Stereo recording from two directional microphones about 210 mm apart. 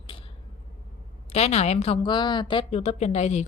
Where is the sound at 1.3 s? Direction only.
30° left (ahead or behind).